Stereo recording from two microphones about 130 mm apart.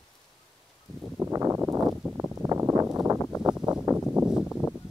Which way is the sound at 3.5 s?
10° right (ahead or behind).